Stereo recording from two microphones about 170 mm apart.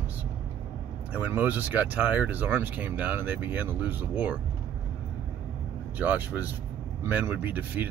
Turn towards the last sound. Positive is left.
turn(degrees=-10)  # may be behind; listen again after turning